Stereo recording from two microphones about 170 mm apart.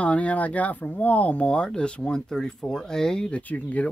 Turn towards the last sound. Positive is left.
turn(degrees=10)  # may be behind; listen again after turning